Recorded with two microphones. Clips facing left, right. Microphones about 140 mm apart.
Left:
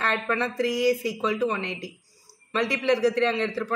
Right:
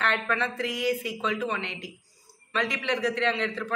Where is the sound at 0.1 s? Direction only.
35° left (ahead or behind).